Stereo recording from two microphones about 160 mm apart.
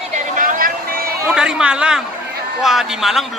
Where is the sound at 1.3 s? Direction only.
5° right (ahead or behind).